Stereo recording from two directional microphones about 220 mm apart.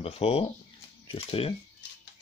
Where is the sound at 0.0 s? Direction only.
30° left (ahead or behind).